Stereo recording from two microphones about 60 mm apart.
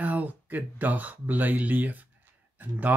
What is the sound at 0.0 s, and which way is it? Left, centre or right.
Speech, right.